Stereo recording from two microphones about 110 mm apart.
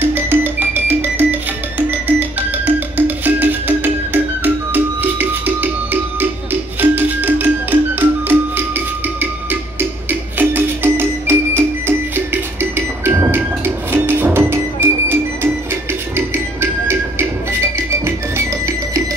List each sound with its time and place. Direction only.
0.0 s music: 20° right (ahead or behind)